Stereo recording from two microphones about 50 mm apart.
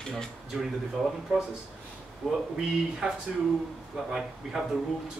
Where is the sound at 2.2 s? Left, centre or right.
Centre.